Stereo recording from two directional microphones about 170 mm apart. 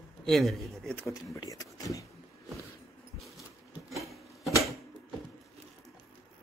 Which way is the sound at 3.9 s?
Centre (ahead or behind).